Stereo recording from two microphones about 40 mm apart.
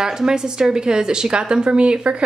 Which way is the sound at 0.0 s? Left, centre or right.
Centre.